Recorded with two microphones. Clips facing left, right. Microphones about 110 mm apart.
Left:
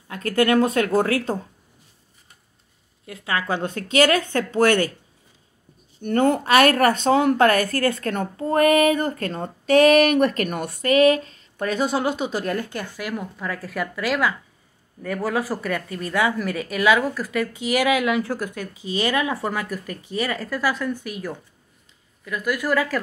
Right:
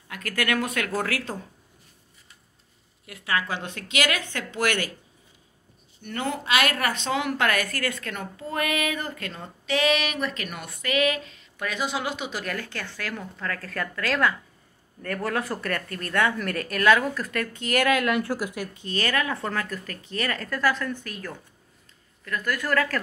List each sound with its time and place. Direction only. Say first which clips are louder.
0.1 s speech: left 8 dB; 25° left (ahead or behind)
3.1 s speech: left 3 dB; 25° left (ahead or behind)
3.5 s a woman's voice: left 9 dB; 40° left (ahead or behind)
6.0 s a woman's voice: left 10 dB; 50° left (ahead or behind)
12.5 s speech: left 6 dB; 15° left (ahead or behind)
18.9 s speech: left 4 dB; 15° left (ahead or behind)